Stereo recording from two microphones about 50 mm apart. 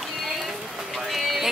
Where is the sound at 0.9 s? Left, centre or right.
Centre.